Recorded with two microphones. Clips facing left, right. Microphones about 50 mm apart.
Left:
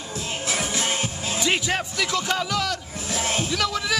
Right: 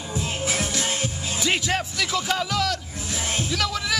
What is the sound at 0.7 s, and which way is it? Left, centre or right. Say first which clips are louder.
Music: left 1 dB; left.